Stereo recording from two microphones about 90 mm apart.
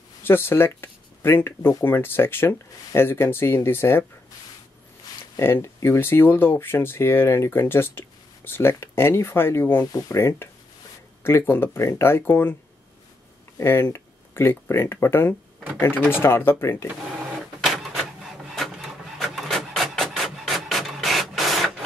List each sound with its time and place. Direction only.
0.2 s speech: 25° left (ahead or behind)
5.4 s speech: 30° left (ahead or behind)
9.9 s speech: 35° left (ahead or behind)
13.6 s speech: 30° left (ahead or behind)
17.6 s printer: centre (ahead or behind)